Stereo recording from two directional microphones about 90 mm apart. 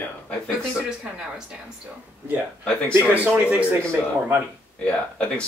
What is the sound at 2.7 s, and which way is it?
Speech, 10° left (ahead or behind).